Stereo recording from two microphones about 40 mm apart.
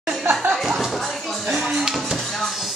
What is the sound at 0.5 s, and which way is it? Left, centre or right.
Music, centre.